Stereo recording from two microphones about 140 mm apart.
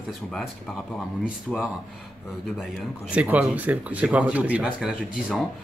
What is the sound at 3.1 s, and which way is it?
Speech, 10° right (ahead or behind).